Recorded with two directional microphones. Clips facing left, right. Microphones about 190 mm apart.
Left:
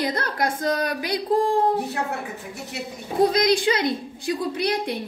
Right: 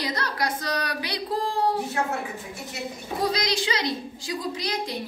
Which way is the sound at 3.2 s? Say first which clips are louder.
Left 8 dB; 55° left (ahead or behind).